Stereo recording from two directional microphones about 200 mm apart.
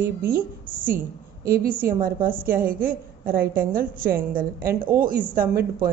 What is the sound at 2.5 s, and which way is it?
A woman's voice, 45° right (ahead or behind).